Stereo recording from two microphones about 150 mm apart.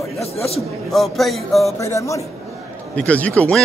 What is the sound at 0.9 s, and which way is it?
Speech, centre (ahead or behind).